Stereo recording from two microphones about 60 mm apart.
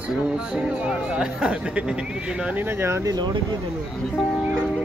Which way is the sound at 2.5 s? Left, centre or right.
Right.